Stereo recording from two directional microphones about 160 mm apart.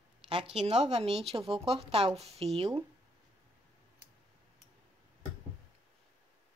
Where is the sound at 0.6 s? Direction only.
45° right (ahead or behind).